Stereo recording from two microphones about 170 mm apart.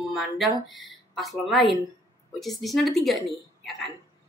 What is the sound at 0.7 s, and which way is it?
Speech, centre (ahead or behind).